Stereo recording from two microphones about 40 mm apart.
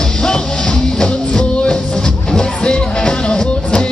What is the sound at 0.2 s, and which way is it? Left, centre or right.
Music, centre.